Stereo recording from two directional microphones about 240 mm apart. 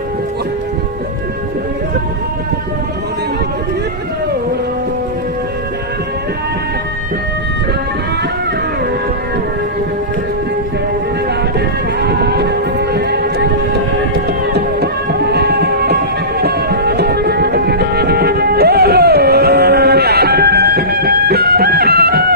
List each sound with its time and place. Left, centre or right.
12.0 s vehicle: right
14.1 s music: right